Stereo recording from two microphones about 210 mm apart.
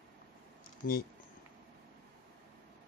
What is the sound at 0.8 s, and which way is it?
Speech, 40° left (ahead or behind).